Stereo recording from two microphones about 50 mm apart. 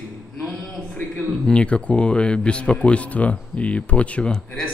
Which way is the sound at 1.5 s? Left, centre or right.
Left.